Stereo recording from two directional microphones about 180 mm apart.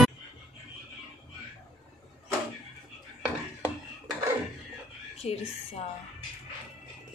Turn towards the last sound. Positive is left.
turn(degrees=35)  # may be behind; listen again after turning